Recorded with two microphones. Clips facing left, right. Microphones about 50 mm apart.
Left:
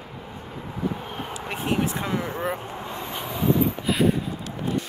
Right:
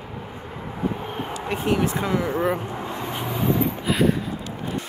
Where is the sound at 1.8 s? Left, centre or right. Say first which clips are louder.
Right 3 dB; right.